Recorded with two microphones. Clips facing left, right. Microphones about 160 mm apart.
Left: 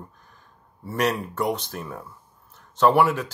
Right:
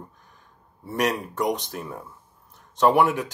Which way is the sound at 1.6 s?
15° right (ahead or behind).